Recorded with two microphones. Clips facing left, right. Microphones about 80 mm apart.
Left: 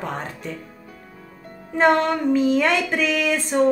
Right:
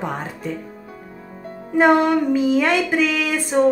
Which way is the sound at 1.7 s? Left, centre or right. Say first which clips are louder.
Right 3 dB; centre.